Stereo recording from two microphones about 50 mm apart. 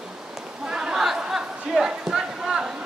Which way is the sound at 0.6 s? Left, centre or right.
Centre.